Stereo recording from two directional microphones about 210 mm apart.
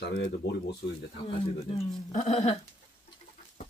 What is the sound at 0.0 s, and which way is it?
Speech, 55° left (ahead or behind).